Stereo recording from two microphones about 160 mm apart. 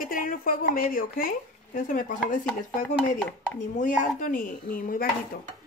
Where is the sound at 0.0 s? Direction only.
60° left (ahead or behind).